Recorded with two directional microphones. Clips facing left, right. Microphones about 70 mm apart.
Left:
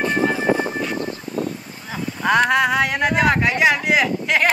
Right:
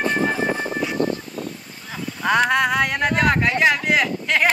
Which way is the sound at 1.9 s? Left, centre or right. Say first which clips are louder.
Left 2 dB; centre.